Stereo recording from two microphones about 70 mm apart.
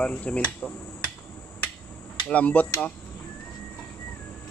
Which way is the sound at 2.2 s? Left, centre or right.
Left.